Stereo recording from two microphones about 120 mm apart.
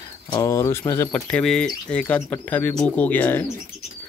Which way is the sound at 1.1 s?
5° left (ahead or behind).